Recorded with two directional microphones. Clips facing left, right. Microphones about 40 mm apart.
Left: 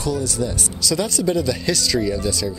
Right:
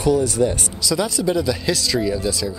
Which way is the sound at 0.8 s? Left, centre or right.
Centre.